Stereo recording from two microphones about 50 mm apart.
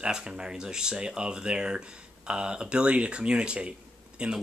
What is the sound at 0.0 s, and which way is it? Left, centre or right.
Speech, centre.